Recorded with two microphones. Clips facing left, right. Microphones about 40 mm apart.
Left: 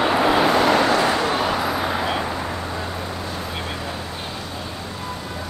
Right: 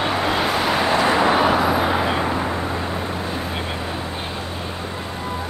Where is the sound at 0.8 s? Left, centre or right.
Right.